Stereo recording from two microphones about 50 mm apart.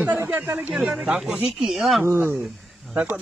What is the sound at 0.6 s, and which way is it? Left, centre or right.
Speech, right.